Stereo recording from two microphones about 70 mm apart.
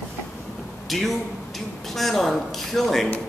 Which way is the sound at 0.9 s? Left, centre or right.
Centre.